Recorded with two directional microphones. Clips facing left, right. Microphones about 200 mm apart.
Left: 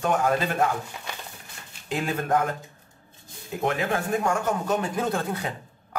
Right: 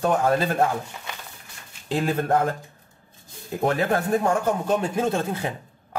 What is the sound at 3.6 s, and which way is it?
Speech, 35° right (ahead or behind).